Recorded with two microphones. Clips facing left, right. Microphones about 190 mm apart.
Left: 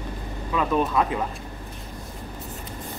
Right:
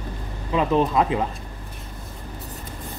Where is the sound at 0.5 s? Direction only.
25° right (ahead or behind).